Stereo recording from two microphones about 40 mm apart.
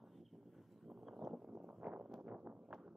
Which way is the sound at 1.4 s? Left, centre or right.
Right.